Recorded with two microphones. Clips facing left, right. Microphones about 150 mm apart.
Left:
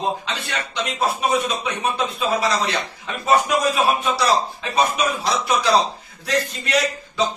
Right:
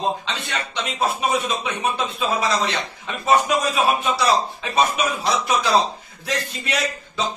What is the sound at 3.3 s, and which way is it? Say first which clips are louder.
A man's voice: left 1 dB; centre (ahead or behind).